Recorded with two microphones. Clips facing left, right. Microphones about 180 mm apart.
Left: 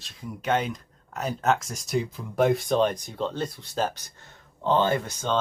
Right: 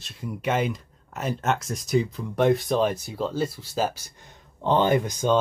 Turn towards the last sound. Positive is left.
turn(degrees=-10)  # may be behind; listen again after turning